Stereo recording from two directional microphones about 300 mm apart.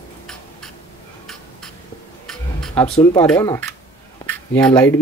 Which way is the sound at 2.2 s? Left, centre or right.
Centre.